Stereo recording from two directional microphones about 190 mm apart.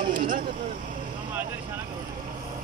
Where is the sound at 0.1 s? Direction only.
50° right (ahead or behind).